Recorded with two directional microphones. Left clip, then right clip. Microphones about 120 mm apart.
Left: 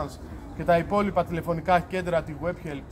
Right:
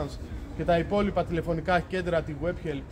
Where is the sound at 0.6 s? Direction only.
20° right (ahead or behind).